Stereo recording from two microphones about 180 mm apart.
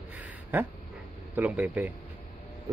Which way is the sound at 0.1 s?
10° right (ahead or behind).